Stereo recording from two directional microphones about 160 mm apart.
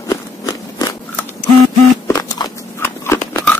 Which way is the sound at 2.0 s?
20° left (ahead or behind).